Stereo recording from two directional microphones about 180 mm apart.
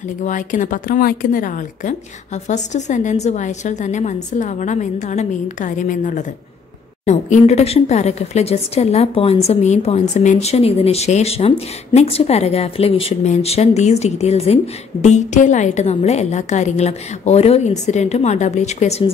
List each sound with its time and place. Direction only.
0.2 s a woman's voice: 45° left (ahead or behind)